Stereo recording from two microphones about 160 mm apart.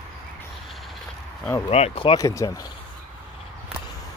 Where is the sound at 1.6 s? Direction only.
40° left (ahead or behind).